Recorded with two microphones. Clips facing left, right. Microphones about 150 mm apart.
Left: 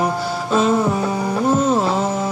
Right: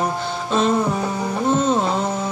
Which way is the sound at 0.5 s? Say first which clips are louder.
Left 2 dB; 5° left (ahead or behind).